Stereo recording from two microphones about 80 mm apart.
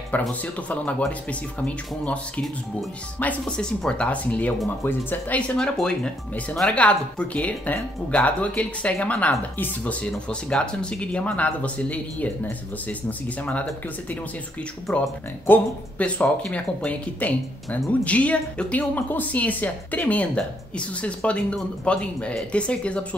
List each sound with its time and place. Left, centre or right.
0.3 s speech: centre
5.4 s speech: centre
14.9 s speech: centre
15.4 s speech: centre